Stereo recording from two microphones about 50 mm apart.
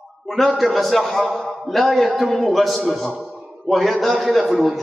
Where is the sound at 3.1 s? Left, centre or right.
Right.